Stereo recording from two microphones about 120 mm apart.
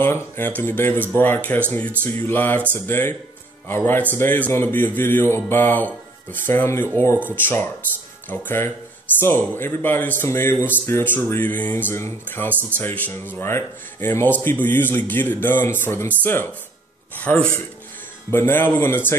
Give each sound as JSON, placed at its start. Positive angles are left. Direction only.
{"t": 0.0, "sound": "a man's voice", "side_deg": 15}